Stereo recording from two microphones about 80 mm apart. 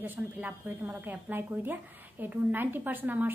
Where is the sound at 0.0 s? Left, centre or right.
Right.